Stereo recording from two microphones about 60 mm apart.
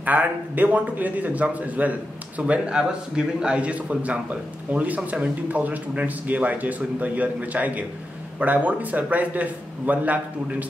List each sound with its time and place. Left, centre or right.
0.0 s a man's voice: right